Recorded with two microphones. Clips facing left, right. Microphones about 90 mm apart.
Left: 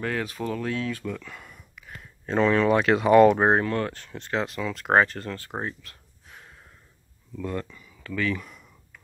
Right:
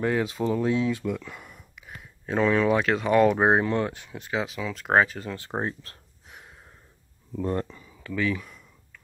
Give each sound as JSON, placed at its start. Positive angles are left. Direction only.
{"t": 0.0, "sound": "speech", "side_deg": -20}
{"t": 3.4, "sound": "speech", "side_deg": -15}
{"t": 5.4, "sound": "speech", "side_deg": -25}
{"t": 6.2, "sound": "gasp", "side_deg": -15}
{"t": 7.3, "sound": "speech", "side_deg": -30}
{"t": 8.0, "sound": "speech", "side_deg": -10}